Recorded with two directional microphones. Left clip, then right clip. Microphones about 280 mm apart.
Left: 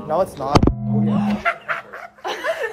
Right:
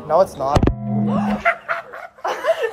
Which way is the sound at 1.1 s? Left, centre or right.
Right.